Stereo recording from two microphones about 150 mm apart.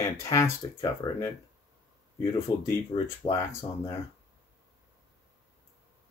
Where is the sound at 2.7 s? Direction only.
20° left (ahead or behind).